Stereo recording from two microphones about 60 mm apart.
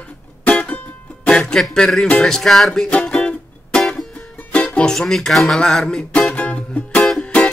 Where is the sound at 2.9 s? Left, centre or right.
Centre.